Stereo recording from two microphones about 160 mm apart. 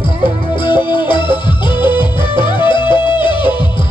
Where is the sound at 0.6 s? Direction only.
30° left (ahead or behind).